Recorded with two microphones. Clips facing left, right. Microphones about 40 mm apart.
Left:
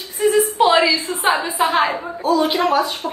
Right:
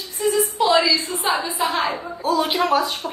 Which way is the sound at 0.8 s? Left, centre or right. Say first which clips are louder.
Left 3 dB; left.